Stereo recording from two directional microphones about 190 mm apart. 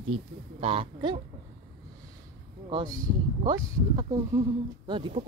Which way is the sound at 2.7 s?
20° right (ahead or behind).